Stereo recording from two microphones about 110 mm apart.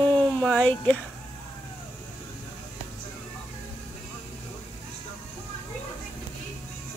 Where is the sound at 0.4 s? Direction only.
10° left (ahead or behind).